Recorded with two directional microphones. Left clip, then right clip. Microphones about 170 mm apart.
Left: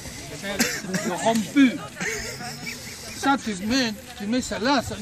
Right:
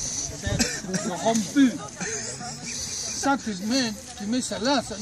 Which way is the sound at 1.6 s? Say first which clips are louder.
Left 2 dB; 30° right (ahead or behind).